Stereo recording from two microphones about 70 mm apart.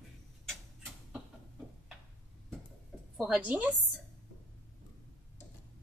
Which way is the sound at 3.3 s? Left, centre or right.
Right.